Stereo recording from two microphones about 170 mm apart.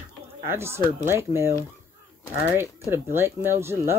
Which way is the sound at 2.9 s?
15° right (ahead or behind).